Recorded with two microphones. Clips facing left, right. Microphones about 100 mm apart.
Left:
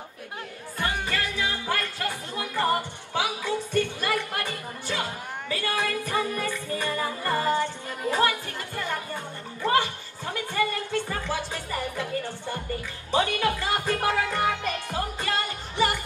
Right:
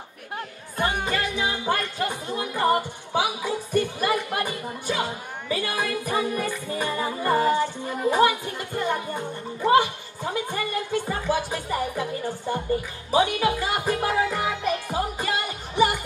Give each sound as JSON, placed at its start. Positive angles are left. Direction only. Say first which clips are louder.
{"t": 0.7, "sound": "music", "louder": "right 4 dB", "side_deg": -20}
{"t": 13.1, "sound": "music", "louder": "right 3 dB", "side_deg": -15}